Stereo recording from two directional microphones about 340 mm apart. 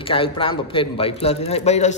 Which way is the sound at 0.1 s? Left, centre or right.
Centre.